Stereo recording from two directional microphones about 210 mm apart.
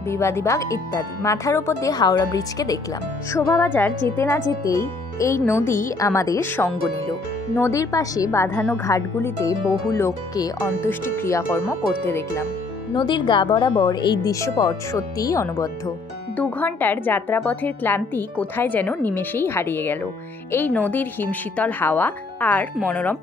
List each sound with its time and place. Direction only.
0.1 s a woman's voice: 15° left (ahead or behind)
12.9 s a woman's voice: 20° left (ahead or behind)